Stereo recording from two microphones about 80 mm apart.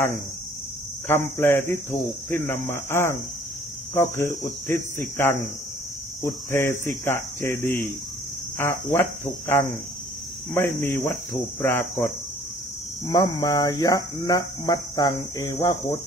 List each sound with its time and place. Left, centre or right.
1.0 s speech: left
3.9 s cricket: left
4.6 s speech: left
13.1 s speech: left